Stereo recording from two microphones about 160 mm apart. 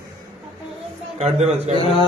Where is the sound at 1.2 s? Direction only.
45° right (ahead or behind).